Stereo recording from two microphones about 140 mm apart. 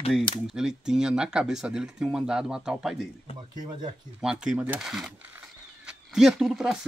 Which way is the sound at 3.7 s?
30° right (ahead or behind).